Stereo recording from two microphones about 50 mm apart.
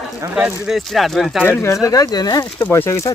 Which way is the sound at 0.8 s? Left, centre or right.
Centre.